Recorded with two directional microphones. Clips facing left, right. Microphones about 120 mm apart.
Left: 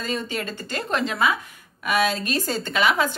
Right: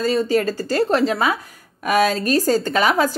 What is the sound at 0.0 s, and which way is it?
A woman's voice, 35° right (ahead or behind).